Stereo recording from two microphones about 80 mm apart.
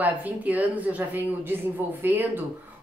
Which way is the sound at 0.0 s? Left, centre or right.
Right.